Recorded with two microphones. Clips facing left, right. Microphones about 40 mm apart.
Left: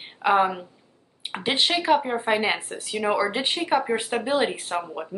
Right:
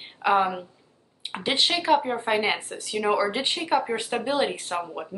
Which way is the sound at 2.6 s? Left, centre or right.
Left.